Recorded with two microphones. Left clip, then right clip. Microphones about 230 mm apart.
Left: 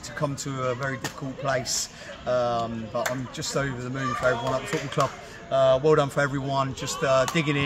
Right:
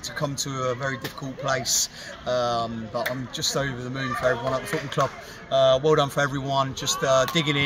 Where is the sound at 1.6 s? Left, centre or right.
Left.